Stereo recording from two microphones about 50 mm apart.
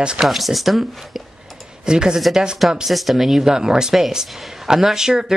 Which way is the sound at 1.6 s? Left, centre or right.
Centre.